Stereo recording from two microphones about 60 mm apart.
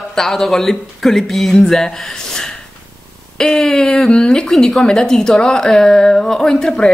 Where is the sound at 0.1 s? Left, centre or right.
Centre.